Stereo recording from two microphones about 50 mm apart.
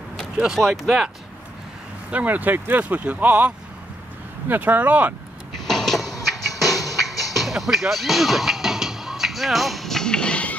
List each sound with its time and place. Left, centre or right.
0.6 s speech: centre
2.0 s speech: right
5.7 s music: centre; by 10.6 s left